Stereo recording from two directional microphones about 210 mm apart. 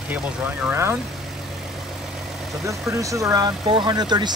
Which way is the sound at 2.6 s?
15° right (ahead or behind).